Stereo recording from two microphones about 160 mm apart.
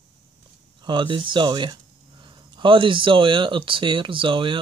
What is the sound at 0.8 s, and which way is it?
Speech, 30° right (ahead or behind).